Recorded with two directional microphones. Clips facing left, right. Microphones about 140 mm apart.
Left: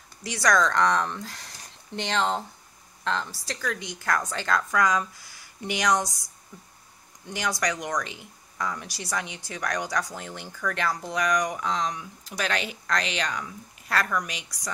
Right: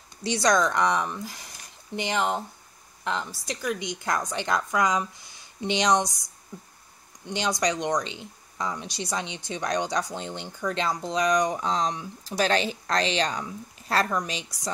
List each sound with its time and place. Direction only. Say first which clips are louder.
0.2 s speech: right 1 dB; 25° right (ahead or behind)
3.0 s a sound: left 1 dB; 15° right (ahead or behind)
3.4 s speech: right 2 dB; 20° right (ahead or behind)
7.2 s speech: right 2 dB; 20° right (ahead or behind)